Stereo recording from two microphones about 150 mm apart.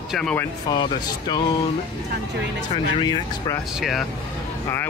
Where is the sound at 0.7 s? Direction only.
30° left (ahead or behind).